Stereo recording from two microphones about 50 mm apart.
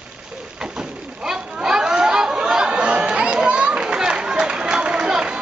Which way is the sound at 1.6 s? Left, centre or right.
Centre.